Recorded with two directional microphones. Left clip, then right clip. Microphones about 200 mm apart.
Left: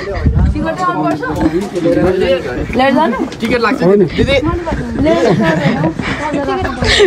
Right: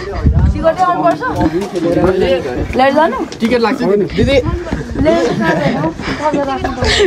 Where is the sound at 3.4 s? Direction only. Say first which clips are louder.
Left 1 dB; 55° right (ahead or behind).